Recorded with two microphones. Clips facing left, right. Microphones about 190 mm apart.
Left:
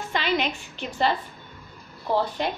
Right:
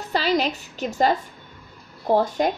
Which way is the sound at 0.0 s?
35° right (ahead or behind).